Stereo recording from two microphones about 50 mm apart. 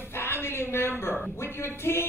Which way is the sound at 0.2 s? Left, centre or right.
Left.